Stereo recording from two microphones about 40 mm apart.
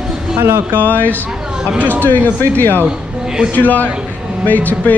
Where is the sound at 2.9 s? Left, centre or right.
Right.